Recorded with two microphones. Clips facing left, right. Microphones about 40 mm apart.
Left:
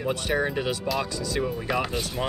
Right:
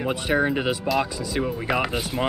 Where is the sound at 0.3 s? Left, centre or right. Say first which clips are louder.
Right 5 dB; centre.